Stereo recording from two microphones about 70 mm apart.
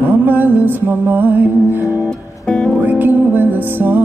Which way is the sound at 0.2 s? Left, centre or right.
Right.